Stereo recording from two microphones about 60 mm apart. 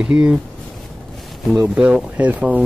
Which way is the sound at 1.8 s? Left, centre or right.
Centre.